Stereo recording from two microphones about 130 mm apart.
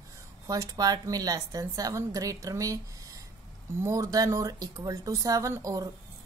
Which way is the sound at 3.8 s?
25° right (ahead or behind).